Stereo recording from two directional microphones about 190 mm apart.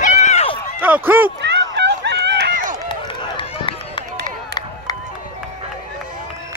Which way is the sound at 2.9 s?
25° left (ahead or behind).